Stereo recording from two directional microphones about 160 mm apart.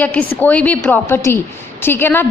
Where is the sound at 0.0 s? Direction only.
10° left (ahead or behind).